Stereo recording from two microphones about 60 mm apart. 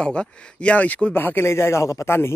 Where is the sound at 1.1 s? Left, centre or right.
Left.